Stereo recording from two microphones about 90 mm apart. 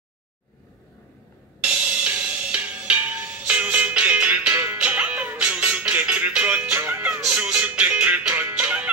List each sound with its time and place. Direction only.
1.7 s music: 15° right (ahead or behind)